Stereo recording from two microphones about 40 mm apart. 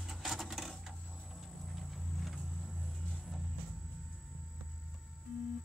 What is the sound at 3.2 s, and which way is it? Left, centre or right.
Music, centre.